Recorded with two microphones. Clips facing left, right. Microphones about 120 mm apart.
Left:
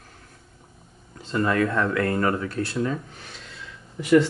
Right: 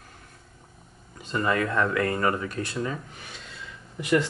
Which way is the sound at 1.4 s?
5° right (ahead or behind).